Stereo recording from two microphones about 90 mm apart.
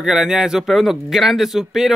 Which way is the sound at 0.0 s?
5° right (ahead or behind).